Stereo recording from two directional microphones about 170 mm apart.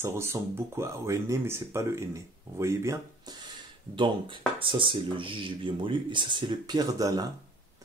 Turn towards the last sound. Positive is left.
turn(degrees=-25)  # may be behind; listen again after turning